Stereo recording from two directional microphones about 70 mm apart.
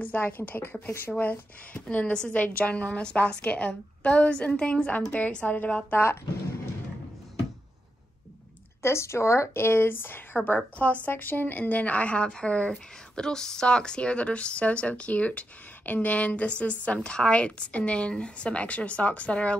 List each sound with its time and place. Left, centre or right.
0.0 s a woman's voice: left
8.8 s speech: left; by 19.5 s centre